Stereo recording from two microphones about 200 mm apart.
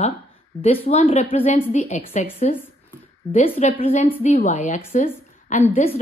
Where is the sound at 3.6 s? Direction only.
30° left (ahead or behind).